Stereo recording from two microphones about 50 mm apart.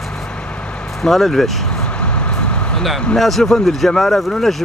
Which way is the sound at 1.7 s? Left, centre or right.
Left.